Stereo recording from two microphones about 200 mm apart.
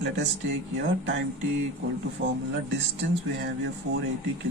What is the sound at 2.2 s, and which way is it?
Speech, 75° right (ahead or behind).